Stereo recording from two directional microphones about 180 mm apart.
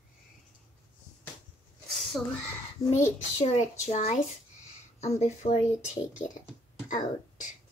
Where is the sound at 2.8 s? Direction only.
15° left (ahead or behind).